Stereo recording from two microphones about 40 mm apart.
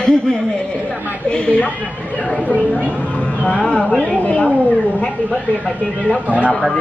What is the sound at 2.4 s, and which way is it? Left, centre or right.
Speech, right.